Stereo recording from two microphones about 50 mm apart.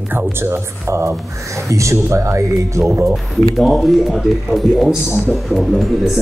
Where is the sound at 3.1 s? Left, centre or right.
Centre.